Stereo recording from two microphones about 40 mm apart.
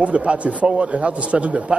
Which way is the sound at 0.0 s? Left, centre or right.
Right.